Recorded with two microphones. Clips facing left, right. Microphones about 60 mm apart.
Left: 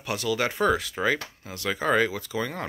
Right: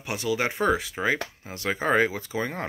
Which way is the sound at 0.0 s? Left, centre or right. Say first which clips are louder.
Even; right.